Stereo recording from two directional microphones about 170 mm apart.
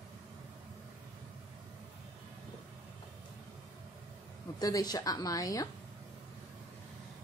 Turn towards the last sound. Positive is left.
turn(degrees=20)  # may be behind; listen again after turning